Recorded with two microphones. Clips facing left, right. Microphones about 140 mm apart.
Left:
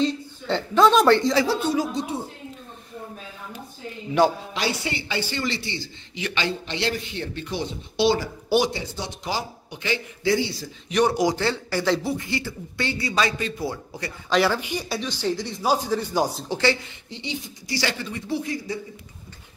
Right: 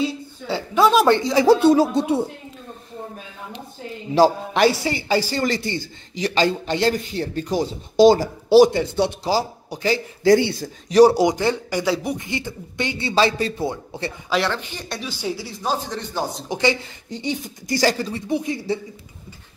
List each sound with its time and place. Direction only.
0.0 s a woman's voice: 10° right (ahead or behind)
2.0 s speech: 65° right (ahead or behind)
4.2 s speech: 35° right (ahead or behind)
8.6 s speech: 60° right (ahead or behind)
9.2 s speech: 35° right (ahead or behind)
10.9 s speech: 35° right (ahead or behind)
11.2 s speech: 15° right (ahead or behind)
14.3 s speech: 5° left (ahead or behind)
15.0 s speech: 10° right (ahead or behind)
15.6 s speech: 10° left (ahead or behind)
16.4 s speech: 15° right (ahead or behind)
17.1 s speech: 45° right (ahead or behind)
18.3 s speech: 20° right (ahead or behind)